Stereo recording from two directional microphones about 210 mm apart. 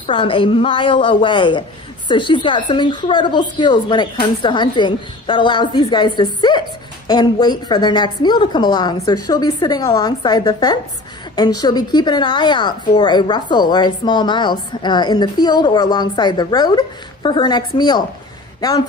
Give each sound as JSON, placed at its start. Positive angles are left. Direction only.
{"t": 0.0, "sound": "a woman's voice", "side_deg": 25}